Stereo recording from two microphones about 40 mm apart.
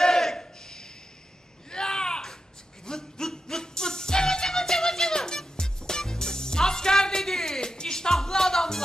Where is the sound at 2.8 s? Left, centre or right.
Centre.